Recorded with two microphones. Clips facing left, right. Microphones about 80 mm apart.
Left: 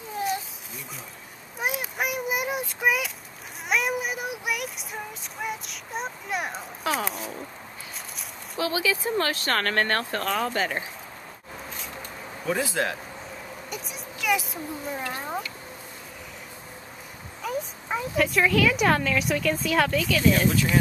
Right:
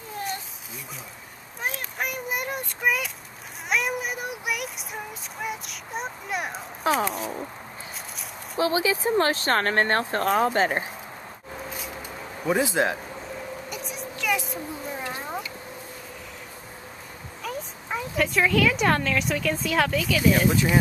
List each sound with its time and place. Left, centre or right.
1.6 s child singing: centre
6.9 s speech: centre
8.5 s speech: right
10.2 s speech: right
12.4 s speech: centre
13.7 s a sound: centre
17.4 s speech: centre